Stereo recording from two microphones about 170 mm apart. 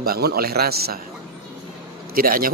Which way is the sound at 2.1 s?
55° right (ahead or behind).